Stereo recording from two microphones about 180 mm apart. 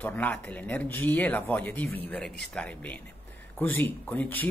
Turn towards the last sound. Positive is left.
turn(degrees=10)  # may be behind; listen again after turning